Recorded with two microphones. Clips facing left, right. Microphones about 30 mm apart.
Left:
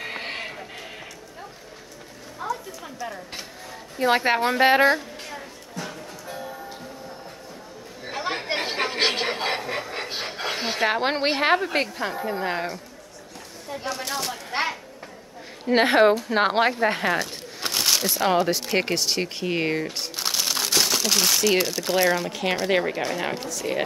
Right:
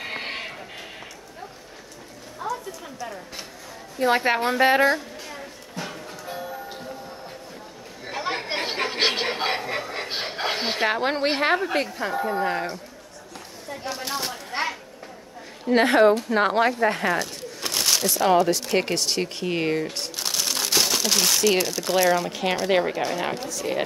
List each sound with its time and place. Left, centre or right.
0.0 s music: centre
2.4 s a sound: centre
4.0 s a woman's voice: centre
5.8 s music: centre
8.0 s chatter: centre
10.2 s a sound: centre
11.0 s a woman's voice: left
11.2 s a woman's voice: centre
14.0 s speech: centre
14.5 s a sound: left
15.6 s a woman's voice: centre